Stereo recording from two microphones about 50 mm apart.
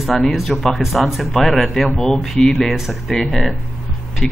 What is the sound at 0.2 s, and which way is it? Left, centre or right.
Speech, centre.